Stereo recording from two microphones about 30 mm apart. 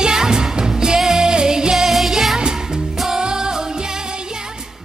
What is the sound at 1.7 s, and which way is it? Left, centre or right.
Music, centre.